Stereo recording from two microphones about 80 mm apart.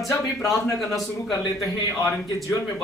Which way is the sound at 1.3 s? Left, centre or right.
Left.